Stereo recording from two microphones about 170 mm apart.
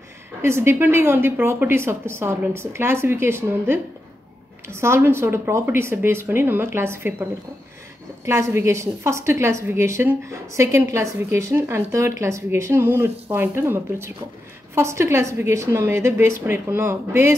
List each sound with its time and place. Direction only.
0.4 s a woman's voice: 15° right (ahead or behind)
8.3 s a woman's voice: 15° right (ahead or behind)